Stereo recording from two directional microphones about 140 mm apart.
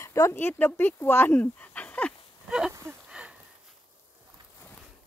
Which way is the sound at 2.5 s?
5° right (ahead or behind).